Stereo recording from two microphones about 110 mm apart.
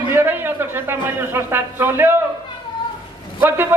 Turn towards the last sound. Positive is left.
turn(degrees=-20)  # may be behind; listen again after turning